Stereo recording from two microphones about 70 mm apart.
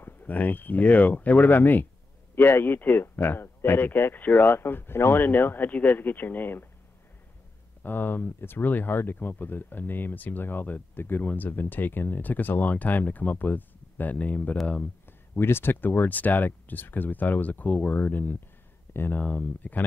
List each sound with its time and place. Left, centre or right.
0.0 s speech: left
7.8 s speech: left
15.0 s speech: left